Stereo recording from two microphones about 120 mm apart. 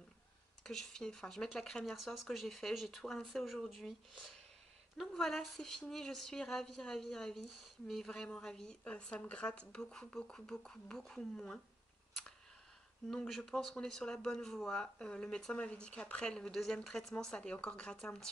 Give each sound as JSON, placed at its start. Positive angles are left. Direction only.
{"t": 0.7, "sound": "speech", "side_deg": 5}
{"t": 13.1, "sound": "speech", "side_deg": 5}